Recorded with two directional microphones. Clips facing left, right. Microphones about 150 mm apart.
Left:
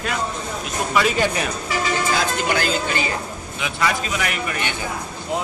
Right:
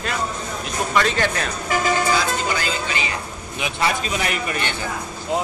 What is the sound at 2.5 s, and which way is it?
Speech, 55° left (ahead or behind).